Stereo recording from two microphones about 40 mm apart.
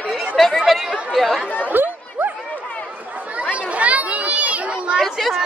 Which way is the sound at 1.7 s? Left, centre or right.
Right.